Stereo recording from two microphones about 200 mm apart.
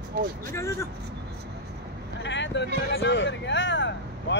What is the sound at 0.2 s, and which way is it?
Speech, 45° right (ahead or behind).